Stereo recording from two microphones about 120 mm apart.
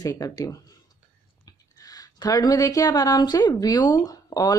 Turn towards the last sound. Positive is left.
turn(degrees=30)  # may be behind; listen again after turning